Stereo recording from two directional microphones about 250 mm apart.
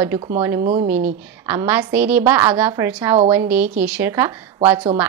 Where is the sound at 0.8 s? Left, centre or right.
Centre.